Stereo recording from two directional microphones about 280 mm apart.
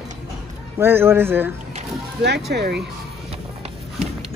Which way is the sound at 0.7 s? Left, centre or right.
Centre.